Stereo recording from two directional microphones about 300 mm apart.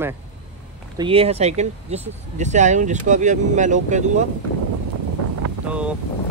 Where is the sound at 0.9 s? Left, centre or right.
Centre.